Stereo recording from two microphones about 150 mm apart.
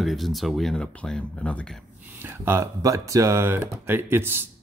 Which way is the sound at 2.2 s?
15° right (ahead or behind).